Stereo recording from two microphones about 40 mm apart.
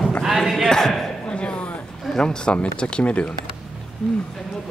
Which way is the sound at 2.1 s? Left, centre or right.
Centre.